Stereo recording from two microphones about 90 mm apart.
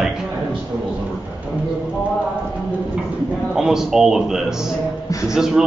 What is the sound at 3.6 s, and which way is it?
A man's voice, 5° right (ahead or behind).